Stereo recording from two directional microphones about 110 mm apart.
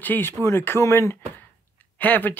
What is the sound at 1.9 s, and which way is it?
Speech, 15° left (ahead or behind).